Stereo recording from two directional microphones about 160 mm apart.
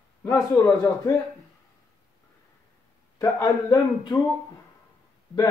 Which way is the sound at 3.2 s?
25° left (ahead or behind).